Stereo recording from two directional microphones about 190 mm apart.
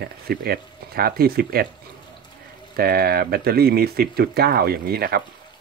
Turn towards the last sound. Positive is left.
turn(degrees=-55)  # may be behind; listen again after turning